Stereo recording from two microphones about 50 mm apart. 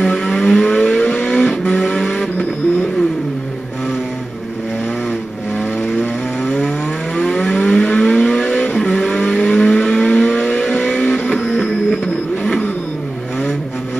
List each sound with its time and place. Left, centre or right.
0.0 s vehicle: centre
5.9 s chainsaw: centre
7.2 s vehicle: centre
11.3 s a sound: centre